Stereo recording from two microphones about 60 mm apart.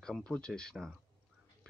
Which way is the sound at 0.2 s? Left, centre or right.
Centre.